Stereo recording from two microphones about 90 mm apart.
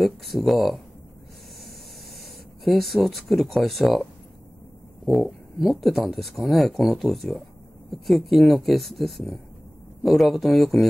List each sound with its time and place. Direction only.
0.0 s speech: centre (ahead or behind)
2.6 s speech: centre (ahead or behind)